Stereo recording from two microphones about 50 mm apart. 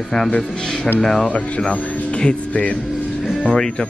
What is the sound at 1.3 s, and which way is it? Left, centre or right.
Speech, left.